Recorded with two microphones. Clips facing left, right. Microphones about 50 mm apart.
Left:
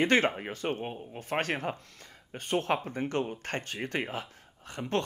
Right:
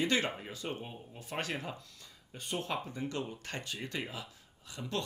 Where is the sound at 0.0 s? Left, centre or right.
Left.